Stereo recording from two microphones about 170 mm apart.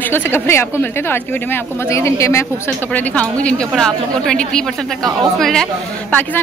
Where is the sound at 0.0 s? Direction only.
15° left (ahead or behind).